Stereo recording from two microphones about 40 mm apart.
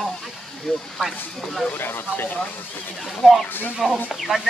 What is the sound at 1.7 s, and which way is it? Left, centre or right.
Speech, left.